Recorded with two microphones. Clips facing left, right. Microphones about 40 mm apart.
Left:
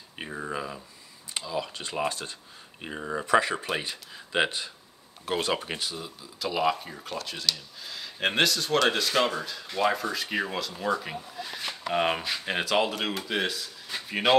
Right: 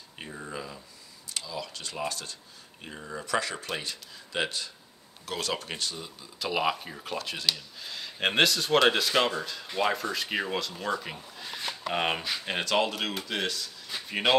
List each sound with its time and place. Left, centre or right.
0.2 s speech: left; by 6.5 s centre
6.5 s speech: centre